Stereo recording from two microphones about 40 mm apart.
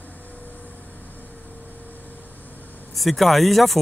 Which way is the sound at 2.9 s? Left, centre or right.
Centre.